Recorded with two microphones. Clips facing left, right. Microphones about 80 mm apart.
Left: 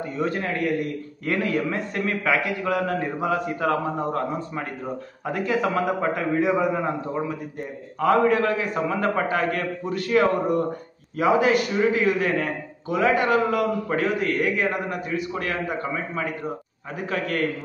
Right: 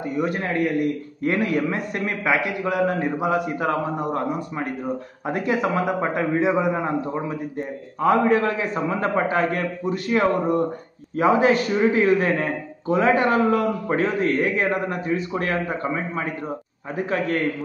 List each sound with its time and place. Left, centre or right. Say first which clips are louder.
0.0 s a man's voice: right 2 dB; centre